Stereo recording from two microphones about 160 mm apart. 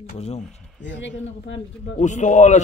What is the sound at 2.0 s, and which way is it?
Speech, 50° left (ahead or behind).